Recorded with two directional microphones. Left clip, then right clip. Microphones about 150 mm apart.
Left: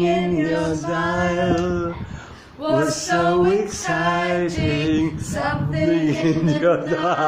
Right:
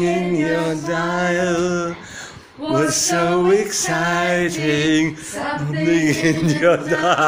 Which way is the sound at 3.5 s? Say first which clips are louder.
Right 3 dB; 10° right (ahead or behind).